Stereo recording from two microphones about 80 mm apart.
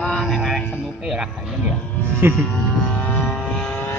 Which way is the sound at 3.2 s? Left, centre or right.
Centre.